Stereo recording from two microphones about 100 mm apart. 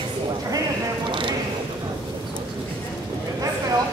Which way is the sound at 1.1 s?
55° right (ahead or behind).